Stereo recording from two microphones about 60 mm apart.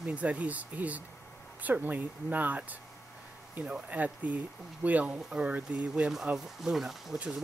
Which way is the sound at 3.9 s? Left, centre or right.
Right.